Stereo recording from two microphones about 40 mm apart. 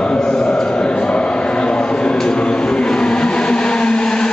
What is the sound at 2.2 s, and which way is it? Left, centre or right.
Vehicle, left.